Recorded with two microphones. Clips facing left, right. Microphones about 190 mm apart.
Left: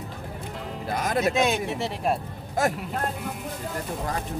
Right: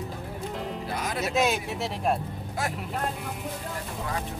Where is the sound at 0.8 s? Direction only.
45° left (ahead or behind).